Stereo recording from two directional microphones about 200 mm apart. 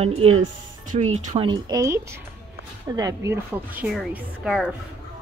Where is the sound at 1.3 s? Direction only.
20° right (ahead or behind); by 4.7 s centre (ahead or behind).